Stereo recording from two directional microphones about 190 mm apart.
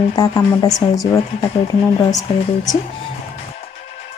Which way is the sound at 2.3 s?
30° left (ahead or behind).